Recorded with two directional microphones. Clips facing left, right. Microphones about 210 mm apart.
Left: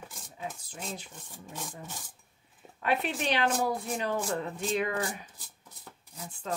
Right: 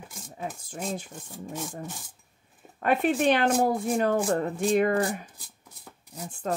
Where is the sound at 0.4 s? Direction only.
50° right (ahead or behind).